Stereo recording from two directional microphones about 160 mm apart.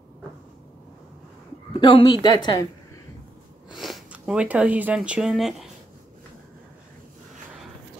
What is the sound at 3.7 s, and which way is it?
Speech, centre (ahead or behind).